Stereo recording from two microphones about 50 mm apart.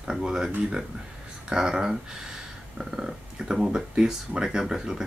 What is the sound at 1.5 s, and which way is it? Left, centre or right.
Speech, centre.